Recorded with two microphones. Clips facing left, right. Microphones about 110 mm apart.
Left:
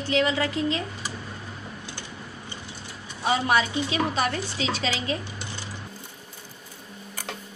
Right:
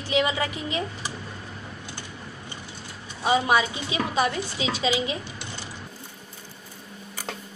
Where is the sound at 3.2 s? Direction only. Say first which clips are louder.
Right 1 dB; 20° right (ahead or behind).